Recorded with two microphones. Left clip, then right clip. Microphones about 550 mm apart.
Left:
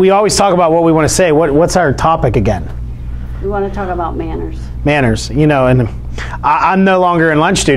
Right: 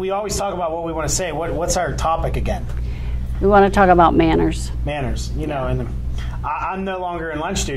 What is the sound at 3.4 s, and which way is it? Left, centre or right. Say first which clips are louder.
A woman's voice: right 6 dB; right.